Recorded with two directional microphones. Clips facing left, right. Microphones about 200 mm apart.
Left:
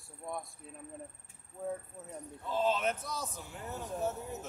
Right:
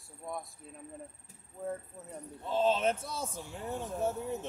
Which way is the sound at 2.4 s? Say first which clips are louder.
Right 3 dB; 25° right (ahead or behind).